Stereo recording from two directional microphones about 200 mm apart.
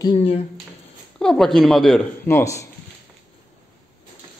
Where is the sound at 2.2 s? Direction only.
15° left (ahead or behind).